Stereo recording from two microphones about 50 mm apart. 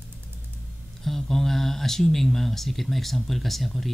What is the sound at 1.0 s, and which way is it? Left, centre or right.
Speech, centre.